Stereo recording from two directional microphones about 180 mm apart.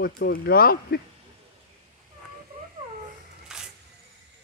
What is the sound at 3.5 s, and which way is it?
Single-lens reflex camera, 5° right (ahead or behind).